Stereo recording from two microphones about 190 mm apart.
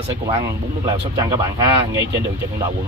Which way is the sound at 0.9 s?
25° right (ahead or behind).